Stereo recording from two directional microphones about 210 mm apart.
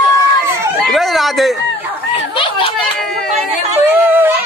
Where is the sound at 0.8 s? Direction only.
Centre (ahead or behind).